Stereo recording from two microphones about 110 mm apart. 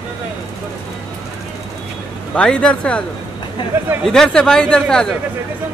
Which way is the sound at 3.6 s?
45° left (ahead or behind).